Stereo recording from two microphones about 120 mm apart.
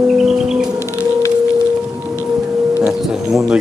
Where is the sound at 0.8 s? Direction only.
25° left (ahead or behind).